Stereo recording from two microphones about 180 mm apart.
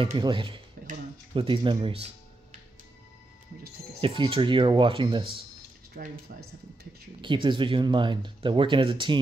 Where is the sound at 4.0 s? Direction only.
30° right (ahead or behind).